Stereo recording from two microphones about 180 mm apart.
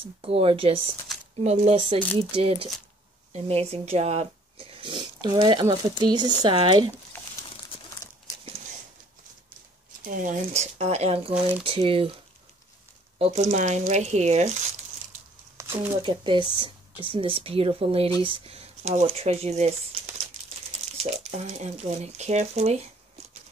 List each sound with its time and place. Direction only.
0.0 s speech: 30° right (ahead or behind)
10.0 s speech: 45° right (ahead or behind); by 12.2 s 30° right (ahead or behind)
13.2 s speech: 40° right (ahead or behind)
15.5 s a sound: 15° right (ahead or behind)
16.0 s speech: 25° right (ahead or behind)
21.0 s speech: 40° right (ahead or behind)